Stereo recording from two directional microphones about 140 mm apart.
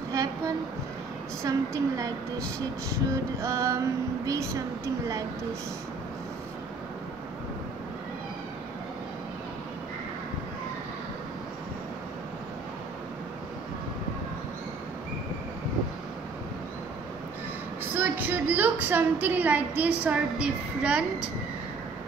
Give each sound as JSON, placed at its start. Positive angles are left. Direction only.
{"t": 1.4, "sound": "a woman's voice", "side_deg": -20}
{"t": 17.9, "sound": "a sound", "side_deg": -15}
{"t": 20.0, "sound": "a woman's voice", "side_deg": -10}